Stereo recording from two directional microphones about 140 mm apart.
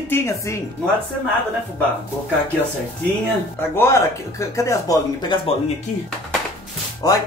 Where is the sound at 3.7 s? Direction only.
20° left (ahead or behind).